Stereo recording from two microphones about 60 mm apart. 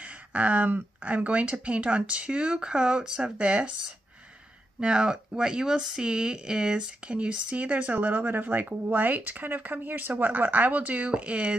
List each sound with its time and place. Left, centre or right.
0.0 s speech: right
4.7 s speech: centre